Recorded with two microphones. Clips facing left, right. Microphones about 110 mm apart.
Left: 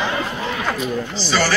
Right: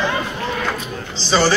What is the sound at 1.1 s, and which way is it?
Speech, 20° right (ahead or behind).